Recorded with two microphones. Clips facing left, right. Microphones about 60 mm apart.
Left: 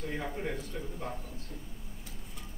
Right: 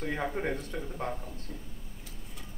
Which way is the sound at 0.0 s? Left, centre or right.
Right.